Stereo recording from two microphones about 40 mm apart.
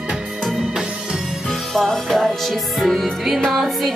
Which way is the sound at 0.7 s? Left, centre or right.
Centre.